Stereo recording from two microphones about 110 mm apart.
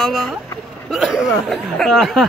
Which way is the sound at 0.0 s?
Centre (ahead or behind).